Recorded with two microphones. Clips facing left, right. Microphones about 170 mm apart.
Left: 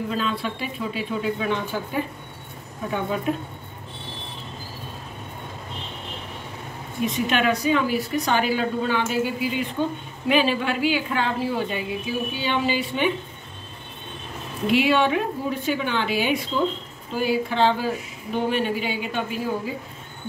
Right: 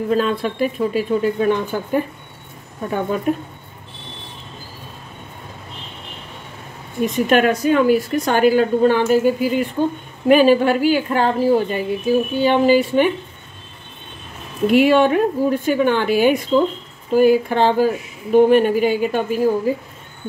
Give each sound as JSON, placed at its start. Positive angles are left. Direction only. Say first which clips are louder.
{"t": 0.1, "sound": "a woman's voice", "louder": "right 8 dB", "side_deg": -50}
{"t": 7.2, "sound": "a woman's voice", "louder": "right 7 dB", "side_deg": -50}
{"t": 14.7, "sound": "a woman's voice", "louder": "right 6 dB", "side_deg": -45}